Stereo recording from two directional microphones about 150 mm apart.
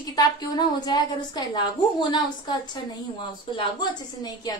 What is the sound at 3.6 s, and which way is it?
A woman's voice, 25° left (ahead or behind).